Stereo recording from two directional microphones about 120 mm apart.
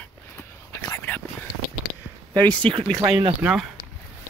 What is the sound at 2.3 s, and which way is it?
Speech, 10° left (ahead or behind).